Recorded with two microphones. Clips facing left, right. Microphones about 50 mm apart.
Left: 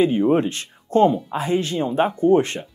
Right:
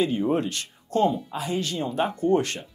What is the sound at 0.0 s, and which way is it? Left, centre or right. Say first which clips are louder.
Speech: left 6 dB; left.